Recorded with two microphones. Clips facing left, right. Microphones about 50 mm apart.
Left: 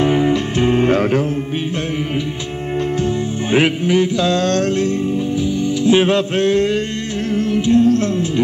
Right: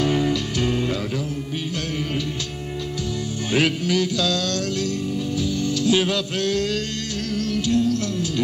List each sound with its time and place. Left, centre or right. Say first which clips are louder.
0.0 s music: left 6 dB; left
3.5 s music: left 6 dB; left